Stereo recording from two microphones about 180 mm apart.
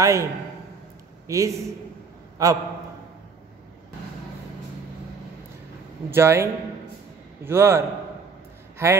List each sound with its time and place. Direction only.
0.0 s a man's voice: 15° right (ahead or behind)
6.0 s a man's voice: 15° right (ahead or behind)